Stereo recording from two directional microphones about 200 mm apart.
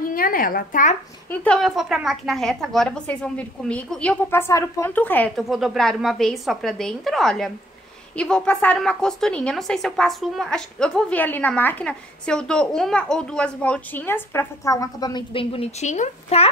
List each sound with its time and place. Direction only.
0.0 s speech: 45° left (ahead or behind)
1.3 s a woman's voice: 5° left (ahead or behind); by 16.4 s 35° left (ahead or behind)